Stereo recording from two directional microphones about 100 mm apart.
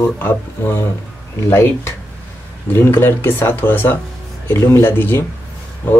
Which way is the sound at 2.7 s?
25° left (ahead or behind).